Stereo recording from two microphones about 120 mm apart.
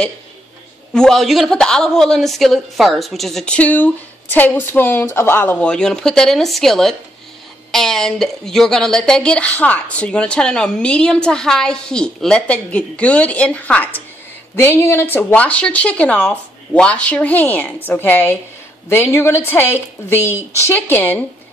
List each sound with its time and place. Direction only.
0.9 s a woman's voice: 5° left (ahead or behind)